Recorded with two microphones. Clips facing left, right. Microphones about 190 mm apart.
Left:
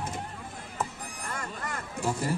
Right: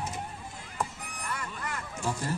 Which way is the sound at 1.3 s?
45° left (ahead or behind).